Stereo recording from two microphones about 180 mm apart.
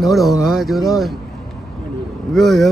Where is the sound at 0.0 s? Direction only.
Centre (ahead or behind).